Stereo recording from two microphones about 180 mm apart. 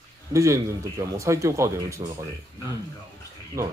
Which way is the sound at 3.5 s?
15° right (ahead or behind).